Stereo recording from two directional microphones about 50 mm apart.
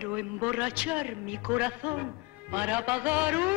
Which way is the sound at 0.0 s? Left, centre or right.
Right.